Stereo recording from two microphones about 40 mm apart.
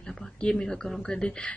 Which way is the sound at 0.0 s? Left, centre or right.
Centre.